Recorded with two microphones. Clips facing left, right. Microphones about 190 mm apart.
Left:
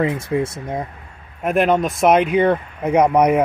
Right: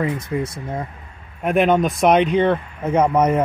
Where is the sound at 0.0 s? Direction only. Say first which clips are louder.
Left 3 dB; 25° left (ahead or behind).